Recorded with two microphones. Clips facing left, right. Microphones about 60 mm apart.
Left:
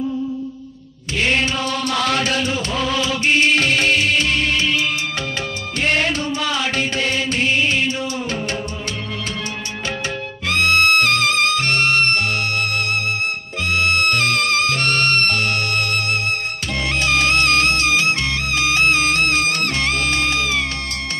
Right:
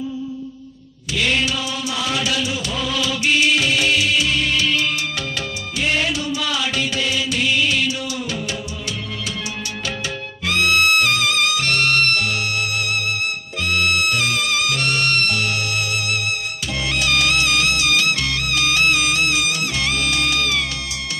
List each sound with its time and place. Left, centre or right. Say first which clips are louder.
1.1 s music: left 1 dB; left
1.6 s music: left 4 dB; left
2.7 s music: left 2 dB; left
5.8 s music: left 2 dB; left
10.5 s music: left 1 dB; left
13.9 s music: left 2 dB; left
17.1 s music: left 3 dB; left
17.9 s music: left 1 dB; left